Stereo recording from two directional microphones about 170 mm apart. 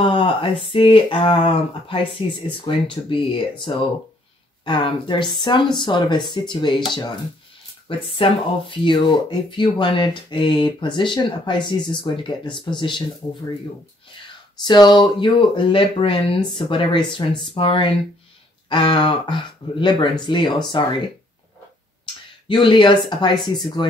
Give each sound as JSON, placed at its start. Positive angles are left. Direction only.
{"t": 0.0, "sound": "speech", "side_deg": 30}
{"t": 8.2, "sound": "speech", "side_deg": 30}
{"t": 14.6, "sound": "speech", "side_deg": 25}
{"t": 20.4, "sound": "speech", "side_deg": 0}
{"t": 22.5, "sound": "speech", "side_deg": 30}